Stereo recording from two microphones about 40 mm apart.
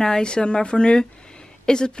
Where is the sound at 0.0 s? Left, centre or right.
Centre.